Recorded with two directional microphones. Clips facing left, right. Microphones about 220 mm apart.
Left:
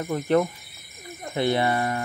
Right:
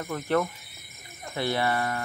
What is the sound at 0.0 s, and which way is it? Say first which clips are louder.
Speech: left 5 dB; 20° left (ahead or behind).